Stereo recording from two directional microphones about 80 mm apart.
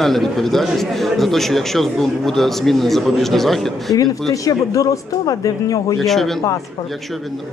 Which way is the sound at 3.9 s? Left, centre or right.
Left.